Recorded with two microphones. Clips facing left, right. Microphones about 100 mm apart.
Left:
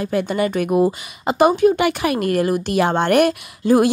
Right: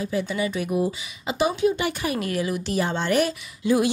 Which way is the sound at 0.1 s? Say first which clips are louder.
Left 8 dB; 60° left (ahead or behind).